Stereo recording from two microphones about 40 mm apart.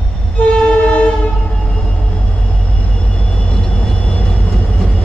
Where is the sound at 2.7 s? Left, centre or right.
Left.